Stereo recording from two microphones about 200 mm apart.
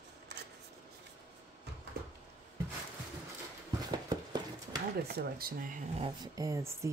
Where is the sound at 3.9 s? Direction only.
20° right (ahead or behind).